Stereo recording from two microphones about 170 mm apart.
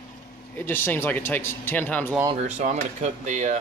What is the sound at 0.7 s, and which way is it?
Speech, 10° left (ahead or behind).